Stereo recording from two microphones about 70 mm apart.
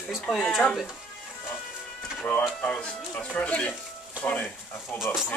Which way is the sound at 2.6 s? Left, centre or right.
Centre.